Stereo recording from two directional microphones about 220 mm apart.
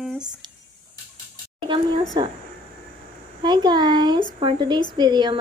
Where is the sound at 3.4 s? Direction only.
20° right (ahead or behind).